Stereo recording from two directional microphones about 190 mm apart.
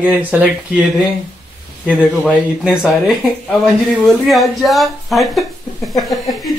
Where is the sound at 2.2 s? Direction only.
5° left (ahead or behind).